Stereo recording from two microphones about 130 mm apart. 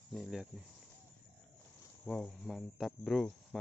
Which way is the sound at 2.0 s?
5° left (ahead or behind).